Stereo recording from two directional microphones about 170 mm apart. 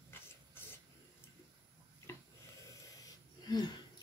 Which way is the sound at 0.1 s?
15° left (ahead or behind).